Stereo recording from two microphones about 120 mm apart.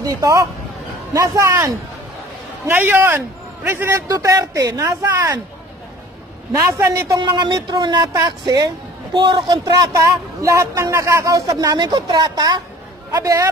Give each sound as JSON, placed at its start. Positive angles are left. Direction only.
{"t": 0.0, "sound": "a man's voice", "side_deg": -30}
{"t": 6.5, "sound": "a woman's voice", "side_deg": -30}